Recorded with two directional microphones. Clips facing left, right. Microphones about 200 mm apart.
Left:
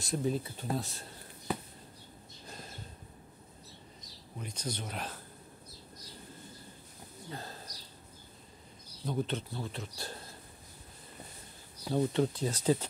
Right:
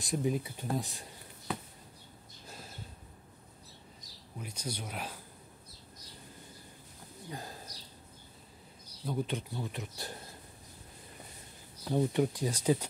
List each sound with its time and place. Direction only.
0.0 s speech: 15° right (ahead or behind)
2.4 s a sound: 5° right (ahead or behind)
4.4 s speech: 10° right (ahead or behind)
7.2 s a sound: 15° right (ahead or behind)
9.0 s speech: 10° right (ahead or behind)
11.9 s speech: 15° right (ahead or behind)